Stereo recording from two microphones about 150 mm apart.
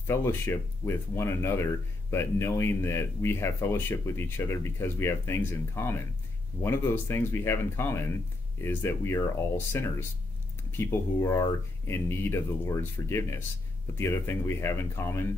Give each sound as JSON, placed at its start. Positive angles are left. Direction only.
{"t": 0.0, "sound": "speech", "side_deg": 15}